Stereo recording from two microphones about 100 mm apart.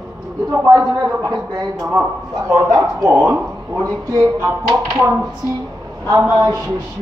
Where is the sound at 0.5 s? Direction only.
30° right (ahead or behind).